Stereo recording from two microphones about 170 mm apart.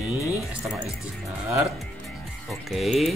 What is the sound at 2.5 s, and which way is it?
Speech, centre (ahead or behind).